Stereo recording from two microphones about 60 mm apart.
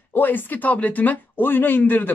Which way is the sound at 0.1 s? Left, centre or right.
Left.